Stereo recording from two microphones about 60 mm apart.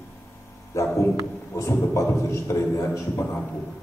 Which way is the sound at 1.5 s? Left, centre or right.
Left.